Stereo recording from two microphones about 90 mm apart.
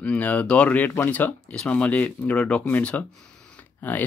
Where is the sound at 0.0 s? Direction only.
15° left (ahead or behind).